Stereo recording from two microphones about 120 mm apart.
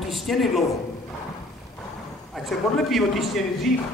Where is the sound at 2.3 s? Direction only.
Centre (ahead or behind).